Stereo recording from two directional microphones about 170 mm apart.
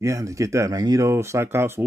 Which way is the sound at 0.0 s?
20° right (ahead or behind).